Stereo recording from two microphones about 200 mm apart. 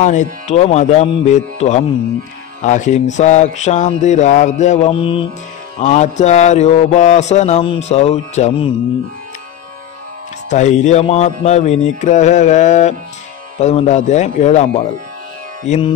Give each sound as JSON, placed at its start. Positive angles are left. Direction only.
{"t": 0.0, "sound": "mantra", "side_deg": 35}
{"t": 10.5, "sound": "mantra", "side_deg": 35}